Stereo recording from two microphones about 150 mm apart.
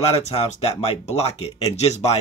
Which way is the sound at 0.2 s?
45° left (ahead or behind).